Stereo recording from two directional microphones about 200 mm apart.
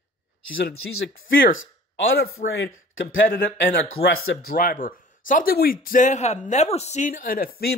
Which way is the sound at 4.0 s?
45° left (ahead or behind).